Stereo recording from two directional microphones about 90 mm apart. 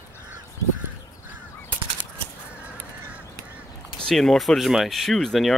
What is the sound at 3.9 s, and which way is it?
Speech, 5° left (ahead or behind).